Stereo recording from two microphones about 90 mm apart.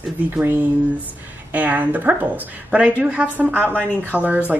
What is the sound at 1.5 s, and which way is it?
Speech, 15° right (ahead or behind).